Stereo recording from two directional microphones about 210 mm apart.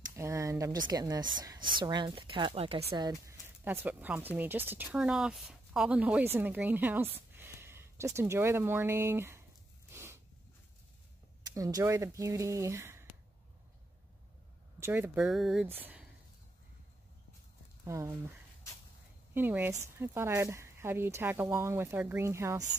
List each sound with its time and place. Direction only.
0.1 s speech: 15° right (ahead or behind)
9.8 s zipper: 10° right (ahead or behind)
11.4 s speech: 15° right (ahead or behind)
14.8 s speech: 10° right (ahead or behind)
17.8 s speech: 15° right (ahead or behind)
19.3 s speech: 10° right (ahead or behind)